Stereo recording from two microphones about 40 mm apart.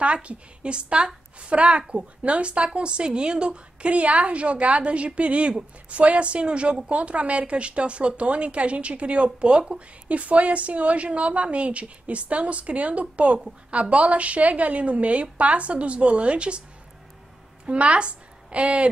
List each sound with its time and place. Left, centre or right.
0.0 s a woman's voice: right
10.0 s a woman's voice: right
17.6 s a woman's voice: right